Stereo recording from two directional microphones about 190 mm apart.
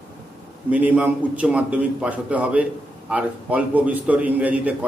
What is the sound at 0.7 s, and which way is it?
A man's voice, 10° right (ahead or behind).